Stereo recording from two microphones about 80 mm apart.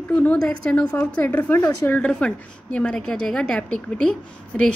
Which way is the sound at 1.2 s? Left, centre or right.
Left.